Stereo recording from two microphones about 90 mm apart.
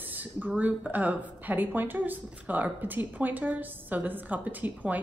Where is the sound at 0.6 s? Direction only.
15° right (ahead or behind).